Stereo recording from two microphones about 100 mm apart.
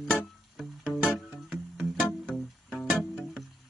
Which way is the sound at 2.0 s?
5° left (ahead or behind).